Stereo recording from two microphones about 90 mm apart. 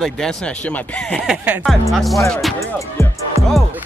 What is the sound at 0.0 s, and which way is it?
Speech, 5° left (ahead or behind).